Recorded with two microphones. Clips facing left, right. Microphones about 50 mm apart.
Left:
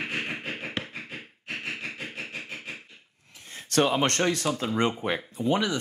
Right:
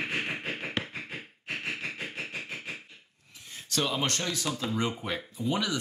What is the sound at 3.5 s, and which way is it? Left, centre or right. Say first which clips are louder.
Speech: left 7 dB; left.